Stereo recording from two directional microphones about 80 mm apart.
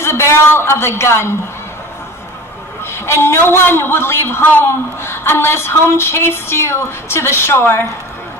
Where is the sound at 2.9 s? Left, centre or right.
Left.